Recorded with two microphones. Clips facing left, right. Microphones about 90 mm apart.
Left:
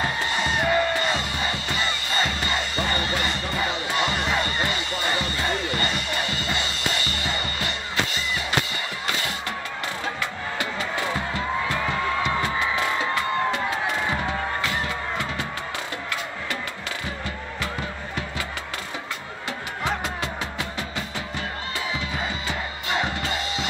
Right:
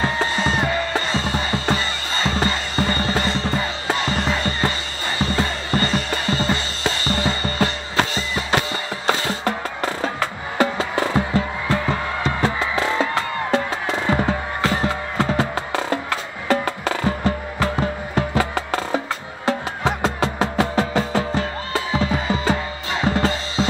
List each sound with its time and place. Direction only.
0.0 s music: 35° right (ahead or behind)
9.0 s music: 35° right (ahead or behind)
10.6 s music: 35° right (ahead or behind)
23.1 s drum kit: 35° right (ahead or behind)